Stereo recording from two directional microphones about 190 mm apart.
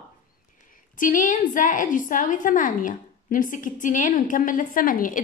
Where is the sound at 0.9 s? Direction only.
45° left (ahead or behind).